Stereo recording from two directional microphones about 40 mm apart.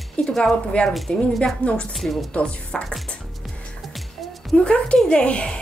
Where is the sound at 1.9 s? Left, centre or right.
Centre.